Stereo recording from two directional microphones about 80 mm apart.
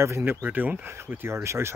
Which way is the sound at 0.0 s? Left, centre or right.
Right.